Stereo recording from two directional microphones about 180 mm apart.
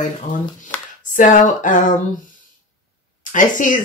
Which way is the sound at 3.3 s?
45° left (ahead or behind).